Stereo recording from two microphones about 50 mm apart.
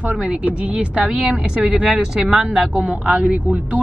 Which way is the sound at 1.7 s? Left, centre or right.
Right.